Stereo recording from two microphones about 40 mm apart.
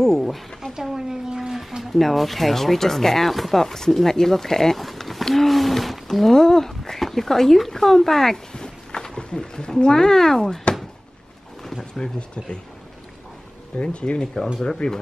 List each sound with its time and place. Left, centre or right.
0.0 s speech: centre
0.7 s a sound: centre
1.8 s speech: centre
11.8 s speech: left
13.7 s speech: left